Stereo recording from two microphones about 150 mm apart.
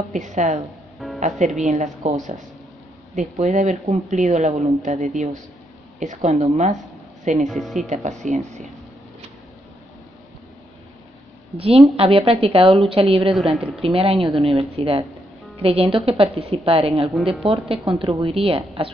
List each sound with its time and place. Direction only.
0.1 s a woman's voice: 55° right (ahead or behind)
0.9 s music: centre (ahead or behind)
1.2 s a woman's voice: 55° right (ahead or behind)
3.2 s a woman's voice: 55° right (ahead or behind)
7.4 s a woman's voice: centre (ahead or behind)
7.9 s a woman's voice: 55° right (ahead or behind)
11.5 s a woman's voice: 40° right (ahead or behind)
13.3 s a woman's voice: centre (ahead or behind)
13.7 s a woman's voice: 40° right (ahead or behind)